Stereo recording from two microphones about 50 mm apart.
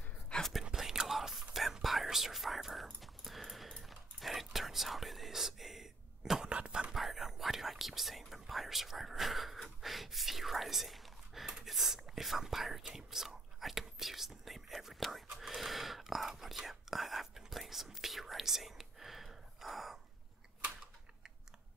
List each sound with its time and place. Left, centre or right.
0.3 s whispering: centre
0.7 s whispering: centre
6.4 s whispering: centre
6.9 s whispering: centre